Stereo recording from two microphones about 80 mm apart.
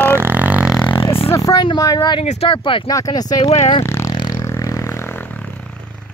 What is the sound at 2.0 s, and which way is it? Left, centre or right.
Speech, left.